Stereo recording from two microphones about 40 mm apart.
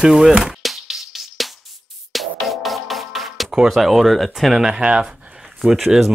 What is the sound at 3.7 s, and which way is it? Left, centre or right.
Speech, centre.